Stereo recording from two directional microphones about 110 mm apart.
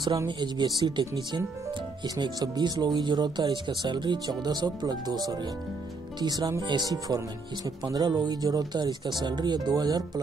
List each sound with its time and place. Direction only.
0.3 s speech: 45° right (ahead or behind)